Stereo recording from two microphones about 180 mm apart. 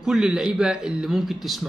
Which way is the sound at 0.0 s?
5° right (ahead or behind).